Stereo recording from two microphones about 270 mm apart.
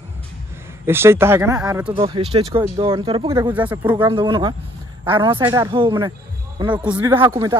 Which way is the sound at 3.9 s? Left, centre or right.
Centre.